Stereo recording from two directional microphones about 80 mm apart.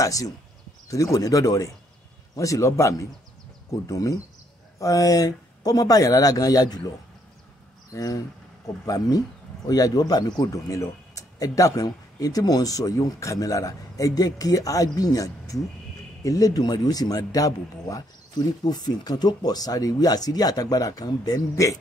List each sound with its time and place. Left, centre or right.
0.0 s a man's voice: left
7.9 s speech: left